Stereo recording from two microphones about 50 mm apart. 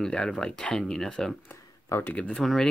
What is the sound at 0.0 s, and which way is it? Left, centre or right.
Speech, centre.